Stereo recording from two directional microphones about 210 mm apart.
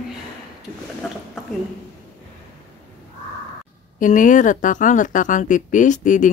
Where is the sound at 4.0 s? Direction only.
40° left (ahead or behind).